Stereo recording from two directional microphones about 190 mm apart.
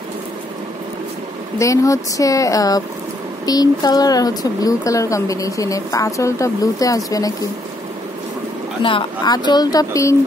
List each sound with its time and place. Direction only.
1.6 s speech: 15° left (ahead or behind)
8.8 s speech: 25° left (ahead or behind)